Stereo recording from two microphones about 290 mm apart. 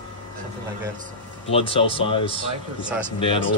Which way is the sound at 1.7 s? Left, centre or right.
Centre.